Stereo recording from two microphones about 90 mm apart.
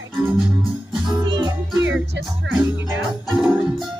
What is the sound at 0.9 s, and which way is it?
Music, 50° right (ahead or behind).